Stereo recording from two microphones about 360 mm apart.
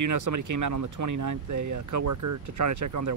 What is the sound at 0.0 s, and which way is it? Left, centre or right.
Speech, right.